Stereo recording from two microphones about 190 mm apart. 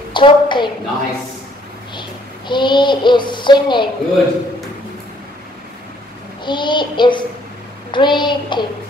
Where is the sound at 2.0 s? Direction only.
25° left (ahead or behind).